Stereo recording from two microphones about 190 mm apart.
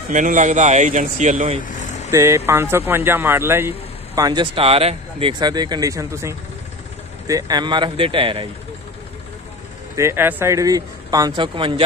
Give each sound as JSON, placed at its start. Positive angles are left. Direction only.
{"t": 0.1, "sound": "speech", "side_deg": -40}
{"t": 2.0, "sound": "a man's voice", "side_deg": -15}
{"t": 9.9, "sound": "a man's voice", "side_deg": -15}